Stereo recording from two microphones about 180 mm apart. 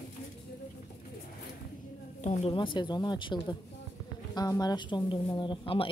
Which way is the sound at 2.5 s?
25° left (ahead or behind).